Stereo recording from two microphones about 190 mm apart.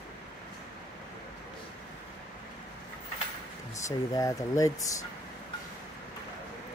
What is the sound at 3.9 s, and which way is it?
Speech, 15° left (ahead or behind).